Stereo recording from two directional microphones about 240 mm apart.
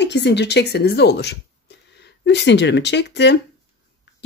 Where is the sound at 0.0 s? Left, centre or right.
Left.